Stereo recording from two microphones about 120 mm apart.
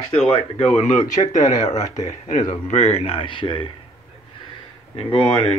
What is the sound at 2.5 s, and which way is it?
Speech, 60° left (ahead or behind).